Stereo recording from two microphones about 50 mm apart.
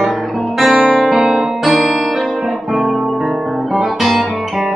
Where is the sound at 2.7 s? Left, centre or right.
Centre.